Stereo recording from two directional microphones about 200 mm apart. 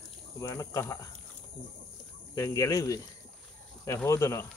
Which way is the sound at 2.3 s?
15° left (ahead or behind).